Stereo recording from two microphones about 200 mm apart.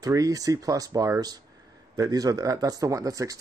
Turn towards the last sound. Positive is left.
turn(degrees=-15)  # may be behind; listen again after turning